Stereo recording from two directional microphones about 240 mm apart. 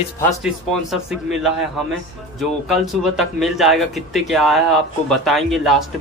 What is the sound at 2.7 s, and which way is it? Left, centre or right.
Speech, centre.